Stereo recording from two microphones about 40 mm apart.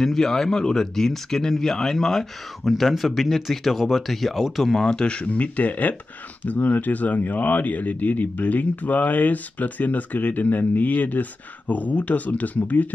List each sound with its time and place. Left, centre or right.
0.0 s speech: centre
4.7 s speech: centre
5.3 s speech: left